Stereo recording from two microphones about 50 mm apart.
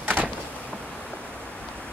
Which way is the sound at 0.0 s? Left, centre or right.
Right.